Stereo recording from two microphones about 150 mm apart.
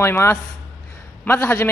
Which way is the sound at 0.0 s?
15° left (ahead or behind).